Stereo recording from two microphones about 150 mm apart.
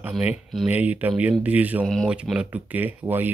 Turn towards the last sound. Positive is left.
turn(degrees=-10)  # may be behind; listen again after turning